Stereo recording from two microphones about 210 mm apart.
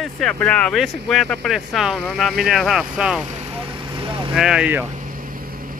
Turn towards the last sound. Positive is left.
turn(degrees=-5)  # may be behind; listen again after turning